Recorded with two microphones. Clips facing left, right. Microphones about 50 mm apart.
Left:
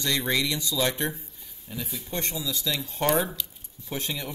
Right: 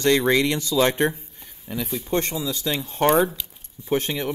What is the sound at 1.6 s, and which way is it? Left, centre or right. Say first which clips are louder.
Speech: right 8 dB; right.